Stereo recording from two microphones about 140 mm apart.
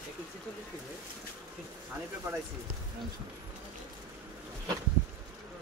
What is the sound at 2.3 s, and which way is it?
Speech, 15° right (ahead or behind).